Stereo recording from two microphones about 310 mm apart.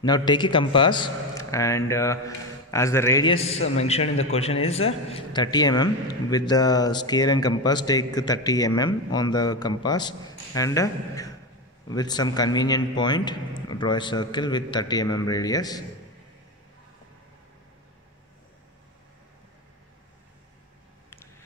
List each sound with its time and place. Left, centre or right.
0.0 s a man's voice: centre